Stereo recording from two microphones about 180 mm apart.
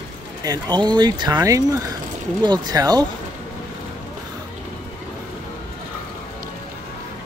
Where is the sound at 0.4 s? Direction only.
20° right (ahead or behind).